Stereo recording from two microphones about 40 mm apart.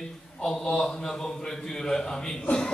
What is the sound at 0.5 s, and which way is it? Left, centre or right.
A man's voice, centre.